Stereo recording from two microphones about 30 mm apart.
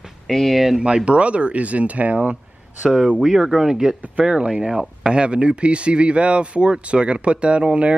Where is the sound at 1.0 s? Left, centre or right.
Right.